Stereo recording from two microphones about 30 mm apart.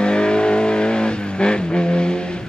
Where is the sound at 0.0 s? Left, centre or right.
Left.